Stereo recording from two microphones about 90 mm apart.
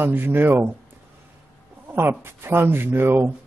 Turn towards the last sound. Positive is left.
turn(degrees=-25)  # may be behind; listen again after turning